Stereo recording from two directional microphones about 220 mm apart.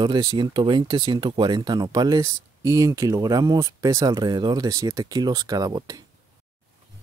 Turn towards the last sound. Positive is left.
turn(degrees=-15)  # may be behind; listen again after turning